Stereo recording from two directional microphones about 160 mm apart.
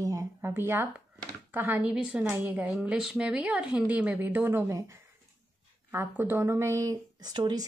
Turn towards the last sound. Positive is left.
turn(degrees=-25)  # may be behind; listen again after turning